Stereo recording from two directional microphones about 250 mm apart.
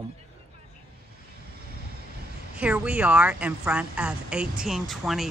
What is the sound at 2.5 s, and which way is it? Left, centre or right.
A woman's voice, centre.